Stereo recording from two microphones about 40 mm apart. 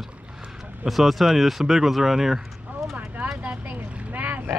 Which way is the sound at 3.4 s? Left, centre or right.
Right.